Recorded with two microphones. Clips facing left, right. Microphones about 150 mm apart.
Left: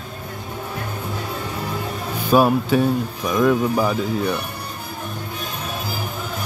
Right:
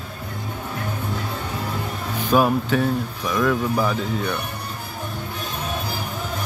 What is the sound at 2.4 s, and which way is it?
Speech, 15° left (ahead or behind).